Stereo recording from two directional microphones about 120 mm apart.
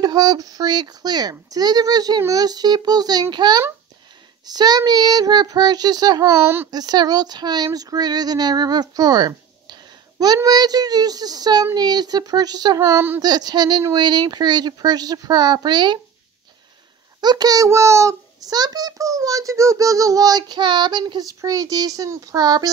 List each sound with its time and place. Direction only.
0.0 s speech: 35° right (ahead or behind)
6.4 s speech: 20° right (ahead or behind)
6.7 s speech: 35° right (ahead or behind)
17.2 s speech: 35° right (ahead or behind)